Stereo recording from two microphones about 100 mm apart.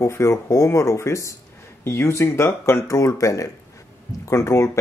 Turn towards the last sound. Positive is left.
turn(degrees=30)  # may be behind; listen again after turning